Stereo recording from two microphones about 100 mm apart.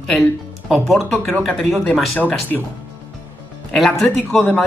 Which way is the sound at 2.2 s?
15° left (ahead or behind).